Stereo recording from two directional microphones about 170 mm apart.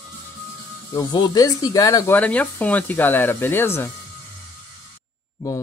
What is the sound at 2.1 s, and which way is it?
Speech, 10° left (ahead or behind).